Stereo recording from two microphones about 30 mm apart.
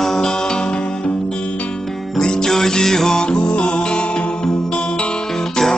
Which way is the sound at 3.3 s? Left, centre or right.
Left.